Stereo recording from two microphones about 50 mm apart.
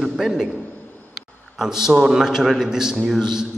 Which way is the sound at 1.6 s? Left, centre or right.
Centre.